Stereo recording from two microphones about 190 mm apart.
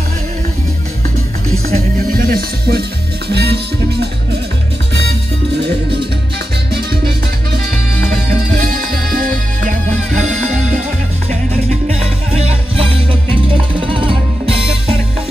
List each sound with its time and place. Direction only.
1.7 s music: 50° right (ahead or behind)
5.6 s music: 60° right (ahead or behind); by 11.3 s 40° right (ahead or behind)
12.7 s music: 30° right (ahead or behind)